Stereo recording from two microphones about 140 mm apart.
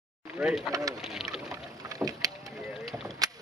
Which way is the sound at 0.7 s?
25° right (ahead or behind).